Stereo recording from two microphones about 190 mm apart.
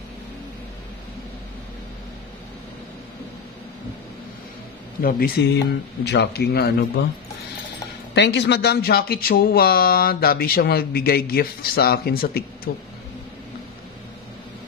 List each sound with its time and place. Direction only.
5.0 s speech: 50° left (ahead or behind)
6.0 s speech: 60° left (ahead or behind)
8.1 s speech: 65° left (ahead or behind)